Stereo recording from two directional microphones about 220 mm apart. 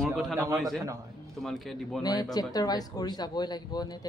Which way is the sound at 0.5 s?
Centre (ahead or behind).